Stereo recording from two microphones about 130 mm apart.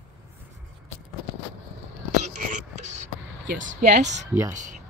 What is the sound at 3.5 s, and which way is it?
Speech, 65° right (ahead or behind).